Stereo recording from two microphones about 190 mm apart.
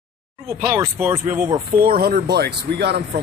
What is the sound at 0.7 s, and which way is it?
Speech, 15° right (ahead or behind).